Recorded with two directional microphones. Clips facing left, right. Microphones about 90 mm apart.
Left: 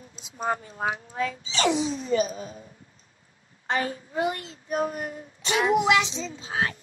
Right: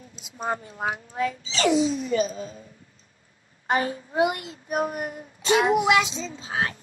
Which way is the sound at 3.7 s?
35° right (ahead or behind).